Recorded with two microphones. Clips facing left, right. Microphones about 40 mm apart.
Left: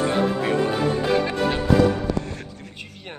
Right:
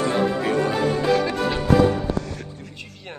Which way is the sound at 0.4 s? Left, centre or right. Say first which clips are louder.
Even; centre.